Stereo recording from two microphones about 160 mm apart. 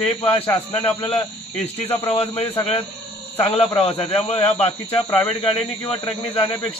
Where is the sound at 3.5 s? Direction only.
40° left (ahead or behind).